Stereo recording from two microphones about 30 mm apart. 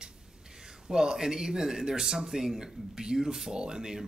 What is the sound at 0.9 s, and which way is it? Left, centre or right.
Speech, centre.